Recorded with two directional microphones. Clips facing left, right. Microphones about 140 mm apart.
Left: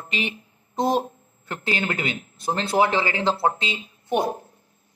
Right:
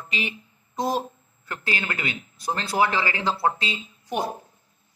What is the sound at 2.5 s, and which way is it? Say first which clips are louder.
Speech: left 3 dB; 25° left (ahead or behind).